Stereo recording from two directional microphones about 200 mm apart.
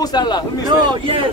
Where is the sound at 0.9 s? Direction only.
25° right (ahead or behind).